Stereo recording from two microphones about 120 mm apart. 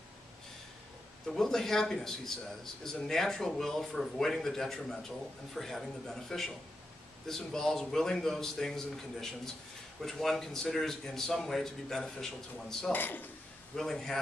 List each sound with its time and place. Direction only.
1.3 s a man's voice: 5° left (ahead or behind)
12.9 s speech: 15° left (ahead or behind)
13.7 s a man's voice: 5° left (ahead or behind)